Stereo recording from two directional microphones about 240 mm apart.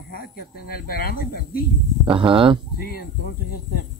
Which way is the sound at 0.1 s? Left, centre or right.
Left.